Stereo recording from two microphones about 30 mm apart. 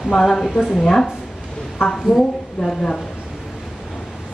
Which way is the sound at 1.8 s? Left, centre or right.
Left.